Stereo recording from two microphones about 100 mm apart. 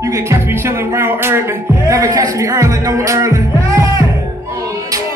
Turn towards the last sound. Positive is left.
turn(degrees=-30)  # may be behind; listen again after turning